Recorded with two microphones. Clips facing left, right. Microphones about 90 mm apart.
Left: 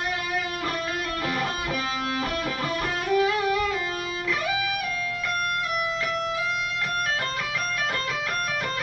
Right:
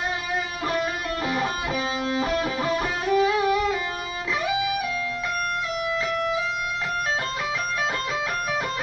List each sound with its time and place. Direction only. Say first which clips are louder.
2.6 s music: right 3 dB; 20° right (ahead or behind)